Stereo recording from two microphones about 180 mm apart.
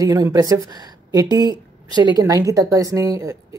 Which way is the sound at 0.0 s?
20° right (ahead or behind).